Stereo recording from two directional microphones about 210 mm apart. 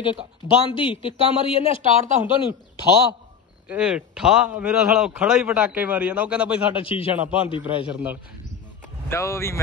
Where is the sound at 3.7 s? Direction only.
5° right (ahead or behind).